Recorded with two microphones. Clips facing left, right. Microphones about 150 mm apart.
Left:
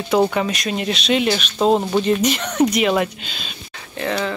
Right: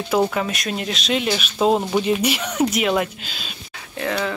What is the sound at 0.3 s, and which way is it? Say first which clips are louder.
Speech: left 3 dB; centre (ahead or behind).